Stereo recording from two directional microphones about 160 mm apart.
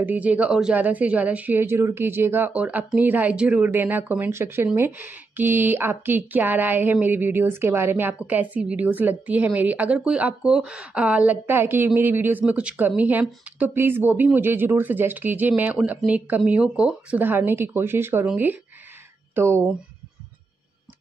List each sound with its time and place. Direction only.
0.0 s speech: 10° right (ahead or behind)